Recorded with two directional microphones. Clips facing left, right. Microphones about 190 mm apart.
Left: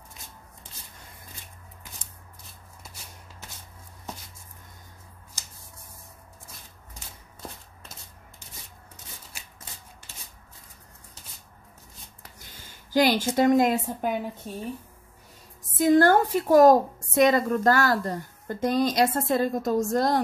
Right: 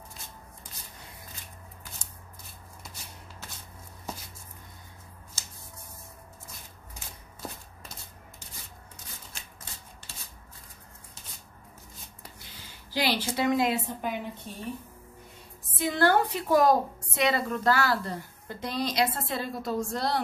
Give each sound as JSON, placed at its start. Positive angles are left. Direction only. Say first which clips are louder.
{"t": 9.3, "sound": "a sound", "louder": "even", "side_deg": 10}
{"t": 12.4, "sound": "a woman's voice", "louder": "even", "side_deg": 45}
{"t": 15.8, "sound": "a woman's voice", "louder": "left 6 dB", "side_deg": 45}